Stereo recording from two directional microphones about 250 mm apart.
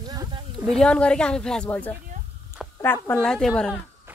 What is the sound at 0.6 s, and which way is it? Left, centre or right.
Speech, centre.